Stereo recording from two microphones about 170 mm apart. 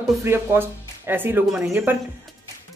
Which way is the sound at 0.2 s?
15° right (ahead or behind).